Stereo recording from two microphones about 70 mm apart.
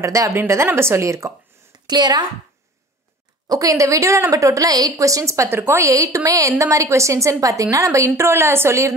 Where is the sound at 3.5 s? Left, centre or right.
Right.